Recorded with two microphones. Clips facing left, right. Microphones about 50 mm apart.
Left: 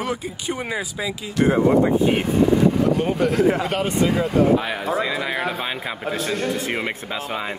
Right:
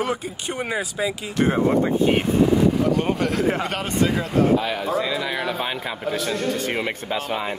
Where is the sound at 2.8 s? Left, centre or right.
Centre.